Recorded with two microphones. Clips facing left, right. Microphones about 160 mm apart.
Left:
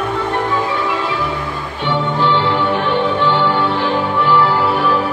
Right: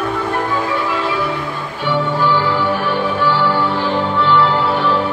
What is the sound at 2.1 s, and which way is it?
Music, 20° left (ahead or behind).